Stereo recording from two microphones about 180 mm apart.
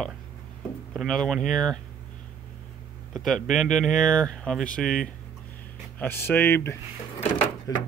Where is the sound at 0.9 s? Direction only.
Centre (ahead or behind).